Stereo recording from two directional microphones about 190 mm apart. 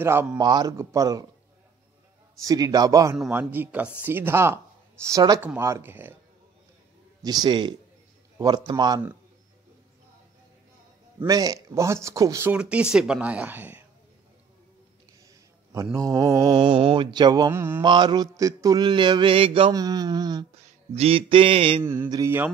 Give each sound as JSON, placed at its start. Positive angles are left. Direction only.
{"t": 0.0, "sound": "speech", "side_deg": -10}
{"t": 2.4, "sound": "speech", "side_deg": -20}
{"t": 7.2, "sound": "mantra", "side_deg": -20}
{"t": 11.1, "sound": "speech", "side_deg": -20}
{"t": 15.7, "sound": "mantra", "side_deg": -15}
{"t": 17.8, "sound": "mantra", "side_deg": -25}
{"t": 20.5, "sound": "a sound", "side_deg": -35}
{"t": 21.8, "sound": "speech", "side_deg": -10}